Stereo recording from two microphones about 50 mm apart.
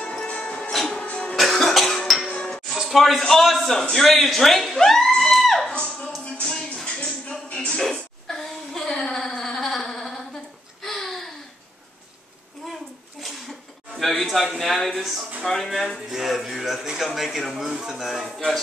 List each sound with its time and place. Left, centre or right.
0.0 s music: centre
0.7 s music: centre
1.3 s cough: centre
2.8 s speech: centre
6.4 s music: centre
7.8 s a sound: centre
13.2 s a sound: centre
14.5 s speech: centre